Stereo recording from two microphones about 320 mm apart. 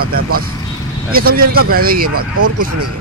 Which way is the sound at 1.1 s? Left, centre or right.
Right.